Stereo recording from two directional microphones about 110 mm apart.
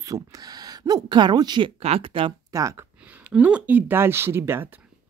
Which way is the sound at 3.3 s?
10° right (ahead or behind).